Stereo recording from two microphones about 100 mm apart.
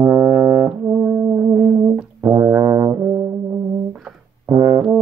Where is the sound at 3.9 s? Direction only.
10° right (ahead or behind).